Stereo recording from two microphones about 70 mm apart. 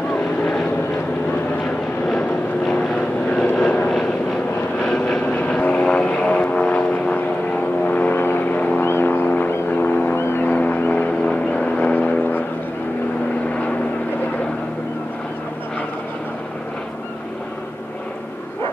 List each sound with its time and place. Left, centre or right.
0.1 s vehicle: centre
3.3 s vehicle: centre
8.8 s vehicle: left
9.7 s music: left
10.1 s music: left
10.5 s vehicle: left